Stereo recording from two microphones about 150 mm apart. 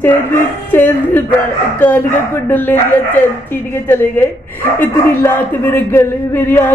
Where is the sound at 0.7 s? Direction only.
10° left (ahead or behind).